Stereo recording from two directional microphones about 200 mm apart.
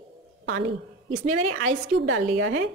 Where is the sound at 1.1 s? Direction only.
40° right (ahead or behind).